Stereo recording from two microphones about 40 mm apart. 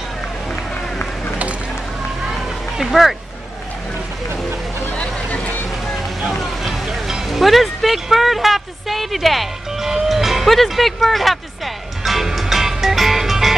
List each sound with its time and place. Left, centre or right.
2.8 s speech: centre
4.9 s vehicle: left
6.3 s music: centre